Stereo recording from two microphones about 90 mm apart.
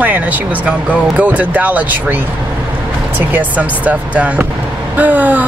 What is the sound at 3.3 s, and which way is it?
Speech, 15° right (ahead or behind).